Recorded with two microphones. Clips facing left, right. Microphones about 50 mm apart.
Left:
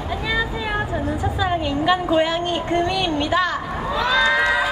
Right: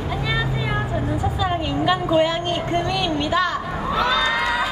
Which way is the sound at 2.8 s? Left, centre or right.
Centre.